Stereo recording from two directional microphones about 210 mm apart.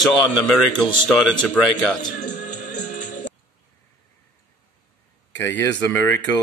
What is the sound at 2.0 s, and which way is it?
Music, 35° left (ahead or behind).